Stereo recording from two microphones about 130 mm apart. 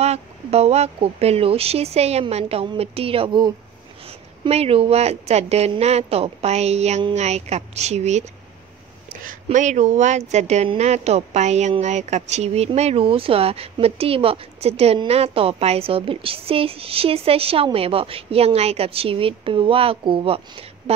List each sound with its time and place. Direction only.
0.0 s speech: 55° right (ahead or behind)
4.5 s speech: 50° right (ahead or behind)
9.2 s speech: 80° right; by 20.9 s 50° right (ahead or behind)